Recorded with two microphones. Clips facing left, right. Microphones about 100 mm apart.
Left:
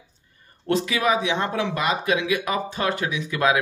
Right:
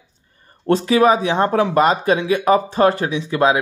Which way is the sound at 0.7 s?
35° right (ahead or behind).